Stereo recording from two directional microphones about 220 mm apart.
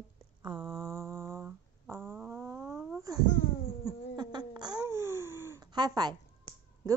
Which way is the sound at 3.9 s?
20° right (ahead or behind).